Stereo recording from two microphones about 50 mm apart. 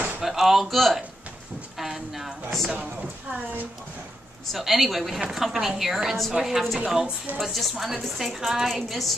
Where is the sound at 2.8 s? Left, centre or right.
Right.